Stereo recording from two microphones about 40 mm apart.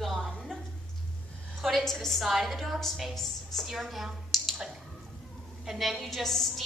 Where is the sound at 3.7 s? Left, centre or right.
Centre.